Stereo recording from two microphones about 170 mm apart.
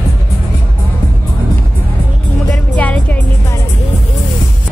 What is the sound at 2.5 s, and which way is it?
Music, 10° left (ahead or behind).